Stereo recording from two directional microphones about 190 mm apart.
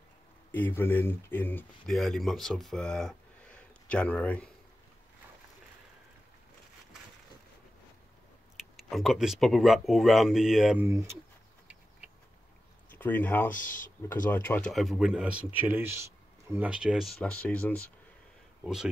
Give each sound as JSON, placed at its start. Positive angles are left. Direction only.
{"t": 0.5, "sound": "speech", "side_deg": 10}
{"t": 8.5, "sound": "speech", "side_deg": 0}
{"t": 10.9, "sound": "speech", "side_deg": -15}
{"t": 12.9, "sound": "speech", "side_deg": 10}
{"t": 13.5, "sound": "speech", "side_deg": 45}
{"t": 14.0, "sound": "speech", "side_deg": 10}